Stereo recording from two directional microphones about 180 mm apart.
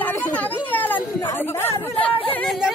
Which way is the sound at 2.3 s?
Centre (ahead or behind).